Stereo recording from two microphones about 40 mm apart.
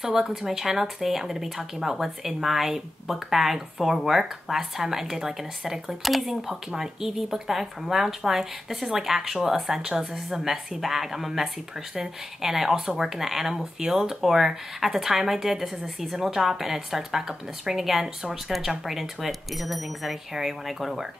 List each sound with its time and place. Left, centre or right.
0.3 s a woman's voice: centre
6.5 s a woman's voice: centre